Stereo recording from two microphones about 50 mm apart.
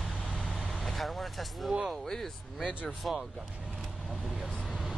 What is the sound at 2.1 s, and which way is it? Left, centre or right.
Speech, centre.